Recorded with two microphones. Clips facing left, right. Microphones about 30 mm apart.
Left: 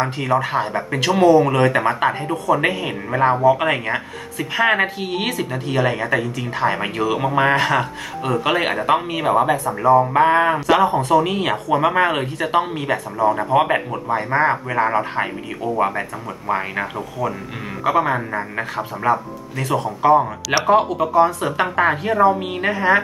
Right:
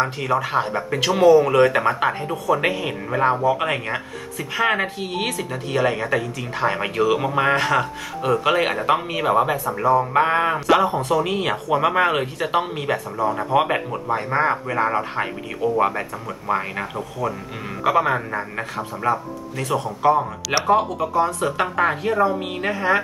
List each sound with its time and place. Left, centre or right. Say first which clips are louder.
0.0 s speech: left 2 dB; centre
16.4 s speech: left 2 dB; centre